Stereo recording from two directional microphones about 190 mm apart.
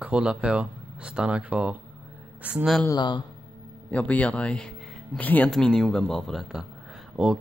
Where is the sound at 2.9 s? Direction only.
25° left (ahead or behind).